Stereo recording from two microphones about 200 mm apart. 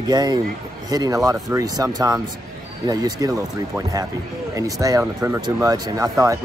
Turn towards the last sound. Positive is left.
turn(degrees=-15)  # may be behind; listen again after turning